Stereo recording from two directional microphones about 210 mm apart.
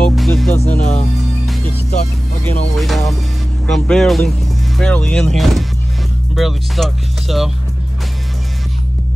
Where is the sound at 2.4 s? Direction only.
Centre (ahead or behind).